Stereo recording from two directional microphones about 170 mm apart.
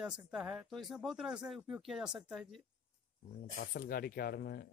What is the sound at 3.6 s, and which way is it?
Speech, 60° left (ahead or behind).